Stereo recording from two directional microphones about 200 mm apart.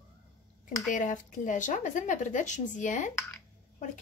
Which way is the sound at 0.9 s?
40° left (ahead or behind).